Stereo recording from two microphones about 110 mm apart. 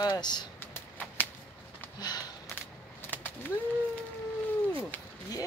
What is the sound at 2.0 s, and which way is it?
Sniff, 35° left (ahead or behind).